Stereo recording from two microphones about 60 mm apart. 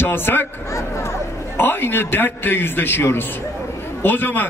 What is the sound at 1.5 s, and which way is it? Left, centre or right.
A man's voice, left.